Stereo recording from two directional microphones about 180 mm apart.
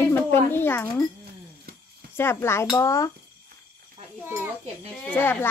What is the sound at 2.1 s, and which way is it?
Speech, 15° left (ahead or behind).